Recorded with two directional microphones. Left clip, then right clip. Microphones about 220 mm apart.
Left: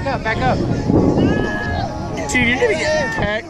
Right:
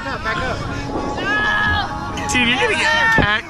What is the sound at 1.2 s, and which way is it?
Music, 55° right (ahead or behind).